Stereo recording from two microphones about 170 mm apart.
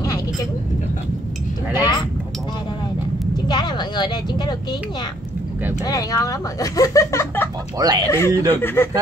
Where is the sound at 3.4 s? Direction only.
25° left (ahead or behind).